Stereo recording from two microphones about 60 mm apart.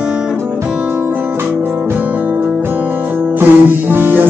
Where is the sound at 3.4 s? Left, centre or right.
Right.